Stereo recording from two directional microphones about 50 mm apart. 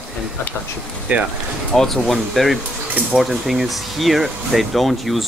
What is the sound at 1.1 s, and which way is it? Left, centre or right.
Speech, right.